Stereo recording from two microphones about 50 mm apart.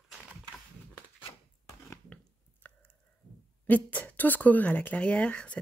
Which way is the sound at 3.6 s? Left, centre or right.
Left.